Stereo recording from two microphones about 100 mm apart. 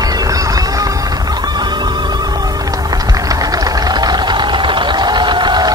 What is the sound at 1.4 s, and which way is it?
Music, 45° right (ahead or behind).